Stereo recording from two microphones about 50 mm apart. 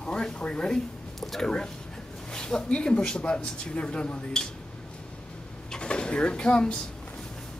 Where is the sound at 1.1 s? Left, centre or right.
Centre.